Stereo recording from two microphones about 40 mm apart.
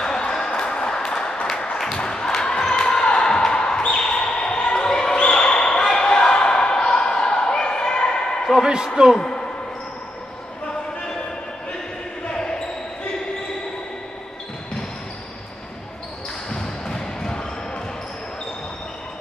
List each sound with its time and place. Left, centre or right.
0.0 s a sound: centre
0.5 s music: left
2.0 s basketball bounce: centre
8.5 s a man's voice: centre
9.2 s speech: left
12.3 s basketball bounce: left
16.4 s basketball bounce: centre